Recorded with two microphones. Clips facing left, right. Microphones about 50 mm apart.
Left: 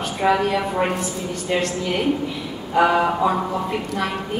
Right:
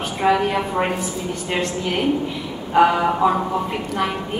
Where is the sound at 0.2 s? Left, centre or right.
Centre.